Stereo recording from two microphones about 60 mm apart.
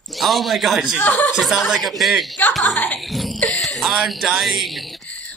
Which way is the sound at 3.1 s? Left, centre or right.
Centre.